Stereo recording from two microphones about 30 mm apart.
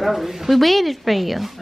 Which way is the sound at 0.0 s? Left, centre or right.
Centre.